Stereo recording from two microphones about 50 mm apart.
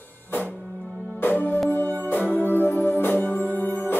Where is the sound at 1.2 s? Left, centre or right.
Left.